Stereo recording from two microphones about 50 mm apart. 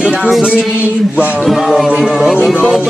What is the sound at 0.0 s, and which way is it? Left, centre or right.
Music, centre.